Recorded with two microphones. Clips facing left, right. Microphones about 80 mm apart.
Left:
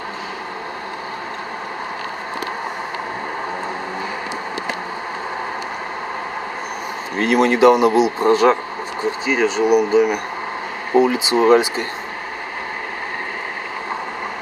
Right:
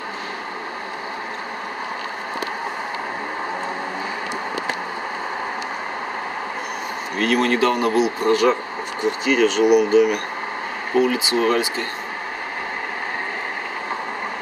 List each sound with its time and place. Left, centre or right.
7.2 s speech: left
9.9 s speech: centre
11.0 s speech: left